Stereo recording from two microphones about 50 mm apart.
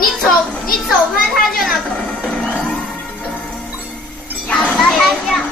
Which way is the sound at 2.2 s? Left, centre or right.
Centre.